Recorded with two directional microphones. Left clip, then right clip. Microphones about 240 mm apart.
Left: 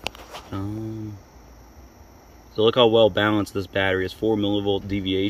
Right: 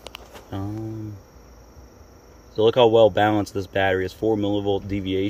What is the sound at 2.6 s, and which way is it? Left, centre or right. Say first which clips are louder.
Speech: right 1 dB; centre.